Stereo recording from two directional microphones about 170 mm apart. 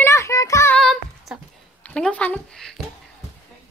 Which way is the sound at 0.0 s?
15° left (ahead or behind).